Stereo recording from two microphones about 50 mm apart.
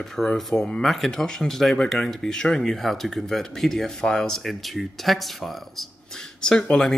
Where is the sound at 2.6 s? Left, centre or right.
Centre.